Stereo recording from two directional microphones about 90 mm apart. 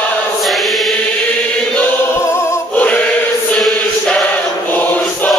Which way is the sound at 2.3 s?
30° left (ahead or behind).